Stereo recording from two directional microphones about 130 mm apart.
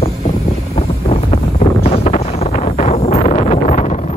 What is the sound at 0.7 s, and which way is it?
Vehicle, 50° left (ahead or behind).